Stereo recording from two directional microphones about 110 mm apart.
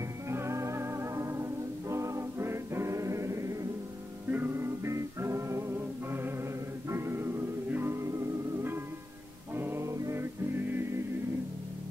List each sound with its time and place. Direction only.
0.3 s music: 25° right (ahead or behind)